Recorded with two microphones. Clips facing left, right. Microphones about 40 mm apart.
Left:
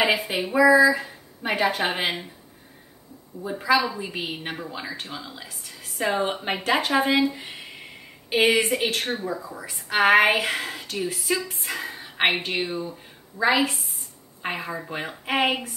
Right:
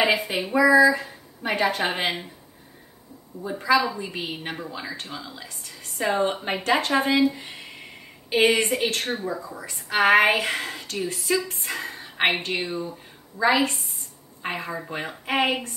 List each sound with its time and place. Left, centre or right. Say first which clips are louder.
0.0 s a woman's voice: even; centre
3.4 s a woman's voice: even; centre